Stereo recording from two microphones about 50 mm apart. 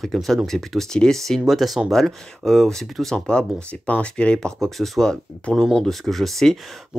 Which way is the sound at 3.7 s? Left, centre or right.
Left.